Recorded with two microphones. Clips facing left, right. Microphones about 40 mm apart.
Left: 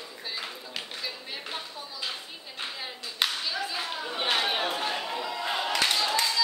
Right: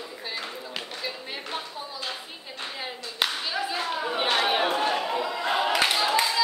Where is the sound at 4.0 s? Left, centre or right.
Right.